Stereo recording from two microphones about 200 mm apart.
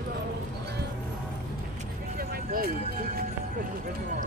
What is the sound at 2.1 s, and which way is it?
Music, 50° right (ahead or behind).